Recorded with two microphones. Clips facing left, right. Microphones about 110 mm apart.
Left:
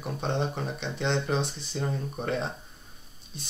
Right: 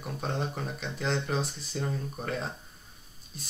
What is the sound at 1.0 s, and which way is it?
Speech, centre (ahead or behind).